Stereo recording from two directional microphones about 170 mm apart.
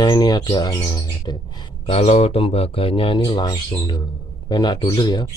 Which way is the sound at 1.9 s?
40° left (ahead or behind).